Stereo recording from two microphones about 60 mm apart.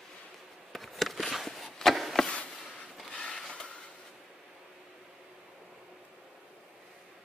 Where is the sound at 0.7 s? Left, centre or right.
Centre.